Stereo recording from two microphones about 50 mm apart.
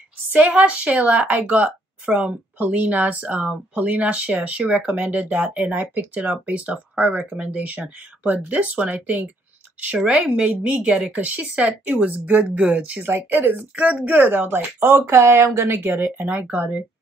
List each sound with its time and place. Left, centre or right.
0.3 s speech: right
10.0 s speech: centre
10.4 s speech: right
13.0 s speech: right
13.5 s speech: right
14.9 s speech: right
15.8 s speech: right